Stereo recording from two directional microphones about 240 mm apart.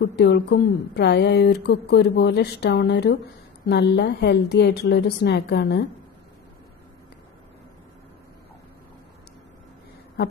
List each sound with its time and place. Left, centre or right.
0.0 s speech: left